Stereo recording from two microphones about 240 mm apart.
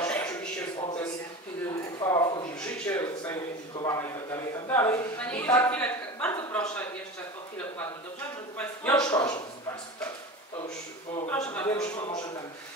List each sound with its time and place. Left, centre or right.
0.0 s a sound: centre
1.7 s a sound: centre
2.5 s a man's voice: centre
8.5 s speech: centre
9.0 s a man's voice: centre
11.2 s a man's voice: centre